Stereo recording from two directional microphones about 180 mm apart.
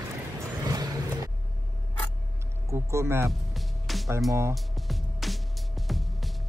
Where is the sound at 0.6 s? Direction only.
20° right (ahead or behind).